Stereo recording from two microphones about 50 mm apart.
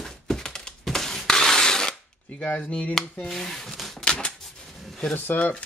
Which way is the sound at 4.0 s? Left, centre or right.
Left.